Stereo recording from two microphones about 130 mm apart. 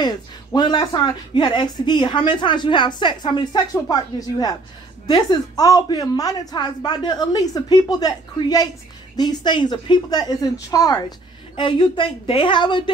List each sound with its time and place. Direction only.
0.0 s speech: 35° left (ahead or behind)